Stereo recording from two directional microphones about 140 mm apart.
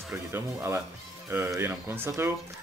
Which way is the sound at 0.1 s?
15° right (ahead or behind).